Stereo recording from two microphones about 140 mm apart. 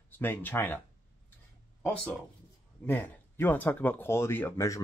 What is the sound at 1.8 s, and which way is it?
Speech, 5° left (ahead or behind).